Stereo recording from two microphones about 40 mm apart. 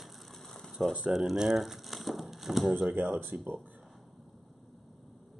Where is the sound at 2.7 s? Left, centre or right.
Right.